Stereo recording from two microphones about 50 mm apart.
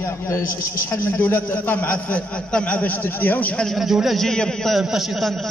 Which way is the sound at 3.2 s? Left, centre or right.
Left.